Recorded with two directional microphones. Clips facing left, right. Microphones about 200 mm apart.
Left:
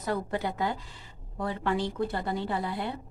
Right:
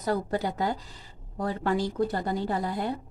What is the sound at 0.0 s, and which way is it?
A woman's voice, 40° right (ahead or behind).